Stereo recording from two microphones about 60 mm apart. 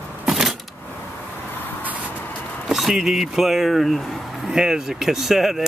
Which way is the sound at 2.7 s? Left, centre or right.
Centre.